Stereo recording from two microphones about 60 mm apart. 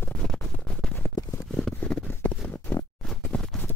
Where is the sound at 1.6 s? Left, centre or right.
Centre.